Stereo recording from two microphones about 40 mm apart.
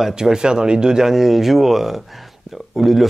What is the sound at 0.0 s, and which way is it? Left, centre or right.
A man's voice, centre.